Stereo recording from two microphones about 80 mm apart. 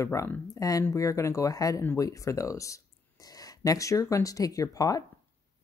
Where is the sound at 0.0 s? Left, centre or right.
Left.